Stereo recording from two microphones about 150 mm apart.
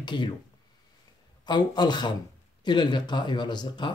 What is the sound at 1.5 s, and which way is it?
Speech, 30° left (ahead or behind).